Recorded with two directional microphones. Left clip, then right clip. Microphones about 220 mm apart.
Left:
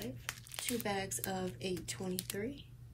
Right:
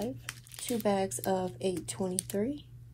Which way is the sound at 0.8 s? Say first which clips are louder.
Right 13 dB; 15° right (ahead or behind).